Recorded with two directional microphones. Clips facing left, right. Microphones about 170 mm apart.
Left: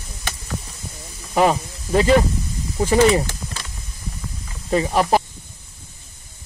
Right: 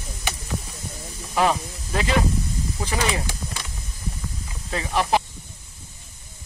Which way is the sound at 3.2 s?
15° right (ahead or behind).